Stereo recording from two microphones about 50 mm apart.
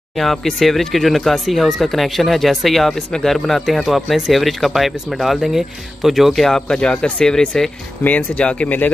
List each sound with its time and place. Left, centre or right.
0.2 s speech: centre
6.7 s speech: centre
8.0 s speech: left